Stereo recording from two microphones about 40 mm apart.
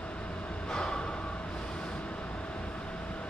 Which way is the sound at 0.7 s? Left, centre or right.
Left.